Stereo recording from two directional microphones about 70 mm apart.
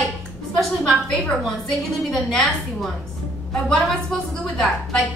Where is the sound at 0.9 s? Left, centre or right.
Centre.